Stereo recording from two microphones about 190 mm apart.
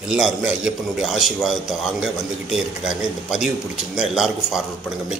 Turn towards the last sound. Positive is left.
turn(degrees=-5)  # may be behind; listen again after turning